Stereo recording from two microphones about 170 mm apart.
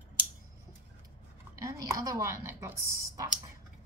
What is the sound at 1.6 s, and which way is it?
A woman's voice, 20° right (ahead or behind).